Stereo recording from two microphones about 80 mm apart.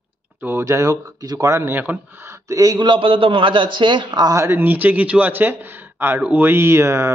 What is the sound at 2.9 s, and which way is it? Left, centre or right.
A man's voice, right.